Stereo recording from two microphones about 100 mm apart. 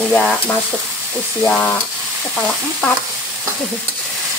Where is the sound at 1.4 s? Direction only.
20° left (ahead or behind).